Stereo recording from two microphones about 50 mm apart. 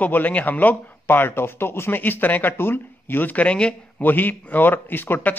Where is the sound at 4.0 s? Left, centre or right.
Left.